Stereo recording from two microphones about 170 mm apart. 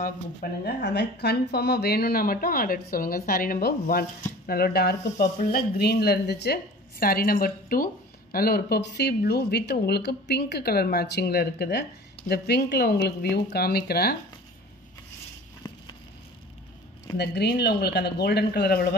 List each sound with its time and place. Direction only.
0.0 s a woman's voice: 65° left (ahead or behind)
17.2 s a woman's voice: 75° left (ahead or behind)